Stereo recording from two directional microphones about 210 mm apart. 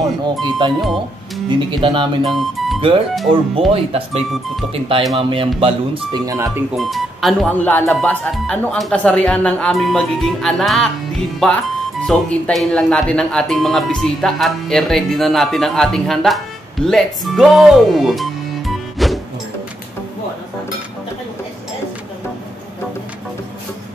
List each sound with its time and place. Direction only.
0.4 s speech: 20° right (ahead or behind)
2.2 s speech: centre (ahead or behind)
3.5 s speech: 30° right (ahead or behind)
6.8 s speech: centre (ahead or behind)